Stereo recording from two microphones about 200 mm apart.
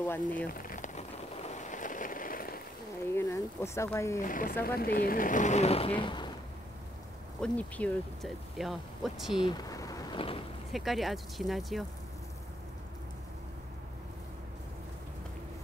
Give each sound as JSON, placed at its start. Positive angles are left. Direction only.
{"t": 0.0, "sound": "speech", "side_deg": 10}
{"t": 0.5, "sound": "rain on surface", "side_deg": 45}
{"t": 3.1, "sound": "speech", "side_deg": 15}
{"t": 4.3, "sound": "speech", "side_deg": 45}
{"t": 7.4, "sound": "speech", "side_deg": 5}
{"t": 9.4, "sound": "a sound", "side_deg": 20}
{"t": 10.7, "sound": "speech", "side_deg": 0}